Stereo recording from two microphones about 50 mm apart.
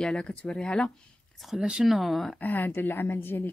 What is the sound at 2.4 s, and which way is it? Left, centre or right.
A woman's voice, left.